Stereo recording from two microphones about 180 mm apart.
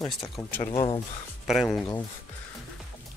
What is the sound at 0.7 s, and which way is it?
Speech, 30° left (ahead or behind).